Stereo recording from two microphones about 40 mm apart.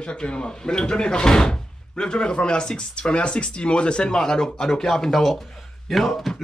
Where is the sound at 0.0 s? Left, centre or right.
Left.